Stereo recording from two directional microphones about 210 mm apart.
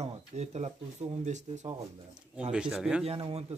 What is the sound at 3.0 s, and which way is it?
Speech, 25° right (ahead or behind).